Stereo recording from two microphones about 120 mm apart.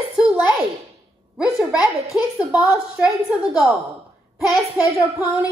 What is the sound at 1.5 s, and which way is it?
Speech, 25° right (ahead or behind).